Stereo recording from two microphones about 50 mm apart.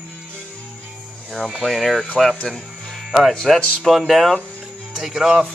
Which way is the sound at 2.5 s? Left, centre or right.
Centre.